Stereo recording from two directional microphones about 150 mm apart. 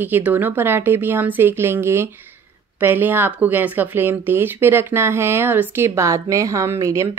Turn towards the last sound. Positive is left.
turn(degrees=-20)  # may be behind; listen again after turning